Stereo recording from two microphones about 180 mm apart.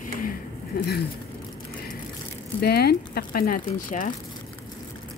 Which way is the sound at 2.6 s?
60° left (ahead or behind).